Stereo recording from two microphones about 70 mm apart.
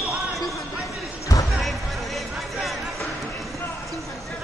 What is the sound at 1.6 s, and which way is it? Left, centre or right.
Music, centre.